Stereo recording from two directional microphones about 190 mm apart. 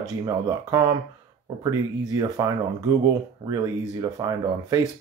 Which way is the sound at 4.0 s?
20° right (ahead or behind).